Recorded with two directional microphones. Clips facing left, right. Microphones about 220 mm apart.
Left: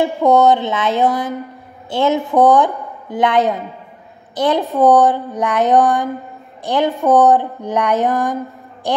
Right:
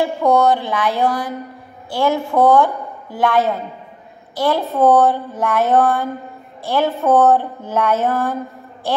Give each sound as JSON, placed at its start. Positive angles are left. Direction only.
{"t": 0.0, "sound": "a woman's voice", "side_deg": 20}